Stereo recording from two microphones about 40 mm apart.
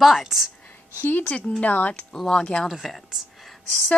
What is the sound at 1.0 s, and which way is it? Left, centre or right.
Speech, left.